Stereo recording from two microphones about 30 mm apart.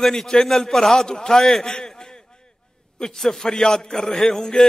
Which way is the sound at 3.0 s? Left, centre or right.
Centre.